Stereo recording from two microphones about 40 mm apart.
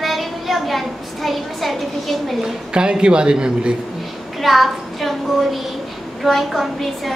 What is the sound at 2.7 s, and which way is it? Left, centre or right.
Speech, right.